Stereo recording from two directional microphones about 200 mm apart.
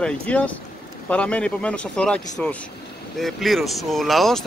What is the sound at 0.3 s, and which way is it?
Speech, 5° left (ahead or behind).